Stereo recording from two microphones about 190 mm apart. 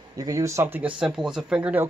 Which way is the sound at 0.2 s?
15° right (ahead or behind).